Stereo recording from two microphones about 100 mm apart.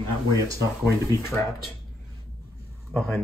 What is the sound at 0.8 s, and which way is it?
Speech, 30° left (ahead or behind).